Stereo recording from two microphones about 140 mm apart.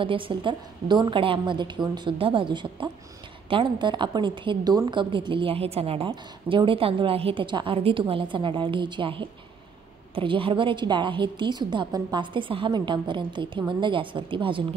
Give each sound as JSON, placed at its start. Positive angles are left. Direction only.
{"t": 0.0, "sound": "a woman's voice", "side_deg": -40}